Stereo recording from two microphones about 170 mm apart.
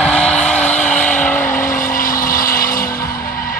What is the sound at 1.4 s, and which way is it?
Vehicle, 50° left (ahead or behind).